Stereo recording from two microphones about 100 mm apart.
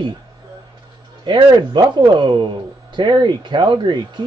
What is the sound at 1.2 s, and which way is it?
A man's voice, 50° right (ahead or behind).